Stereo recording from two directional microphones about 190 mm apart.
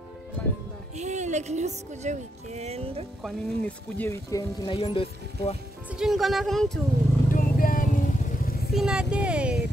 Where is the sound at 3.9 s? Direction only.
15° left (ahead or behind).